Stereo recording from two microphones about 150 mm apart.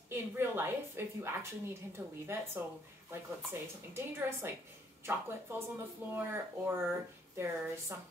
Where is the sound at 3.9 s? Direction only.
15° right (ahead or behind).